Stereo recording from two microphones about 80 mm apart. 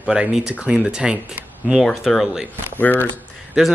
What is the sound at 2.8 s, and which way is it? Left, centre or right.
Speech, left.